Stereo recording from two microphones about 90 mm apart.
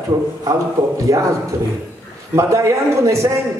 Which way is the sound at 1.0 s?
35° right (ahead or behind).